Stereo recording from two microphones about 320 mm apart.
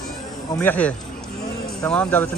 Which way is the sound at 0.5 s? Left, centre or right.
Centre.